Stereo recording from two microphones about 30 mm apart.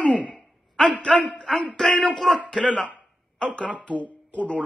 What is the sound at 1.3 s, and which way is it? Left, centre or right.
Speech, left.